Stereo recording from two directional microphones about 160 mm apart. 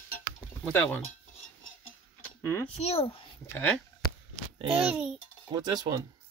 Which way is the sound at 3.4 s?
10° left (ahead or behind).